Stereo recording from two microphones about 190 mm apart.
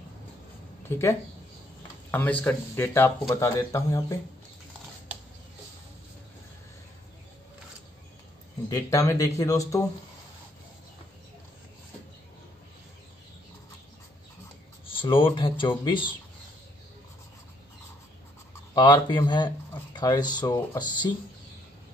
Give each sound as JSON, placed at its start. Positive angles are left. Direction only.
{"t": 0.8, "sound": "a man's voice", "side_deg": 10}
{"t": 8.6, "sound": "a man's voice", "side_deg": 20}
{"t": 14.9, "sound": "speech", "side_deg": 25}
{"t": 18.5, "sound": "speech", "side_deg": 25}